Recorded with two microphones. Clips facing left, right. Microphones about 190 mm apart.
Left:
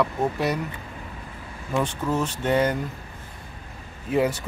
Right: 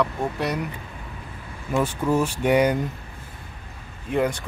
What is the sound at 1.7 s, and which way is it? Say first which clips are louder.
Speech: right 3 dB; 10° right (ahead or behind).